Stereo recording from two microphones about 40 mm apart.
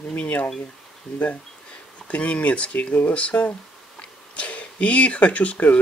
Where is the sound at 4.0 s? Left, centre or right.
Left.